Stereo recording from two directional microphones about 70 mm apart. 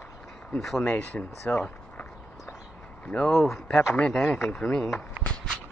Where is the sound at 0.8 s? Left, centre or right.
Left.